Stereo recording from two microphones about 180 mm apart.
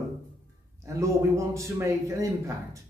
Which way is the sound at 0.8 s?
15° right (ahead or behind).